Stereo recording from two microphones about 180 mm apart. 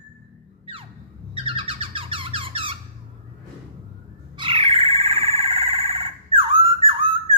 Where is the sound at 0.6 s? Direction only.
30° right (ahead or behind).